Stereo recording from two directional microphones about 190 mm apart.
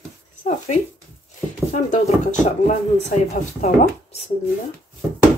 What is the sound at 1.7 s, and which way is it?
Speech, 40° left (ahead or behind).